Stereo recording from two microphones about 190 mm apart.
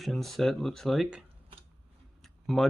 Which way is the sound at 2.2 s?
Centre (ahead or behind).